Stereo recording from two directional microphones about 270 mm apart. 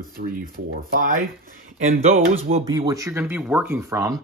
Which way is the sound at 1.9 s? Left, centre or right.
Right.